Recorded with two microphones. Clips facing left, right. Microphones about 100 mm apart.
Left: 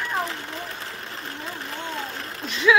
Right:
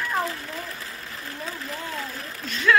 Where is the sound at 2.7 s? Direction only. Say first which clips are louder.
Left 1 dB; 5° left (ahead or behind).